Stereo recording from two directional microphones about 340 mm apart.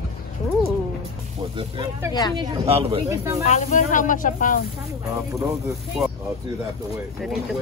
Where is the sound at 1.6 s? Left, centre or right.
Centre.